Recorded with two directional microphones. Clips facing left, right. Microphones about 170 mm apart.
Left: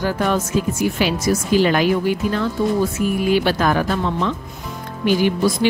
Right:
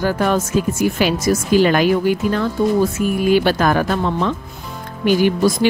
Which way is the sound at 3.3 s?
45° right (ahead or behind).